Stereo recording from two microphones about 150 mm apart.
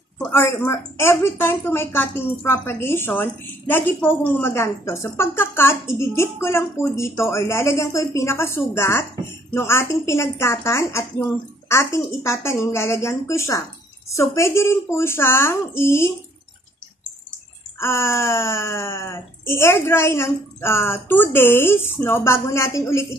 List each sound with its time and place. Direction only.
0.3 s a woman's voice: 15° left (ahead or behind)
17.7 s a woman's voice: 15° left (ahead or behind)